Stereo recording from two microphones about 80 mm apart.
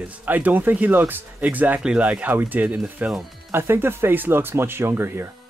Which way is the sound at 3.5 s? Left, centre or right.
Right.